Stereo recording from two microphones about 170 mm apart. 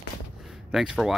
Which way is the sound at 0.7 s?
Centre (ahead or behind).